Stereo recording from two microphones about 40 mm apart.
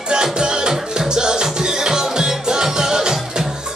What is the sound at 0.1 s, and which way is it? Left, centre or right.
Music, centre.